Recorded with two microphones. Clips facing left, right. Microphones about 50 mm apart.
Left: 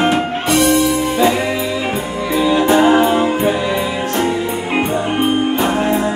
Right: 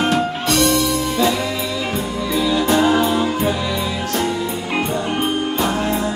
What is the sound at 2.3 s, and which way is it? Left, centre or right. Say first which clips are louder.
Music: left 4 dB; left.